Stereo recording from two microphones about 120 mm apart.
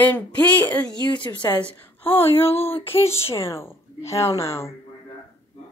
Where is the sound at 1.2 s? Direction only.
40° left (ahead or behind).